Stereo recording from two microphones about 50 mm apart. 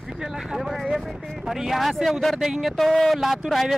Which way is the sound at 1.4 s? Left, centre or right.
Centre.